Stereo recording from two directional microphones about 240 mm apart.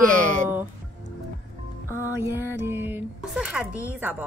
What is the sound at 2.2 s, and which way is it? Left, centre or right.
Speech, centre.